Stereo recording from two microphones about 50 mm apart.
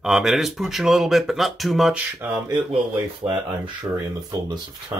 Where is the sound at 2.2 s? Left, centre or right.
Right.